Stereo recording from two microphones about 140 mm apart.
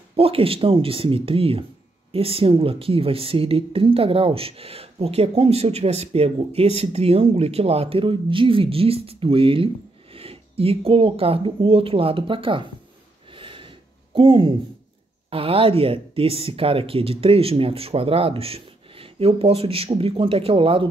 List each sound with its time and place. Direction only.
0.1 s speech: 40° right (ahead or behind)
13.3 s snort: 40° right (ahead or behind)
14.1 s speech: 40° right (ahead or behind)